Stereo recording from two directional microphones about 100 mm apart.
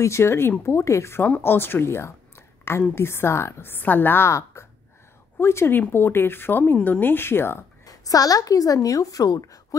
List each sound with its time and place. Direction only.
0.0 s speech: 25° left (ahead or behind)
7.8 s a woman's voice: 35° left (ahead or behind)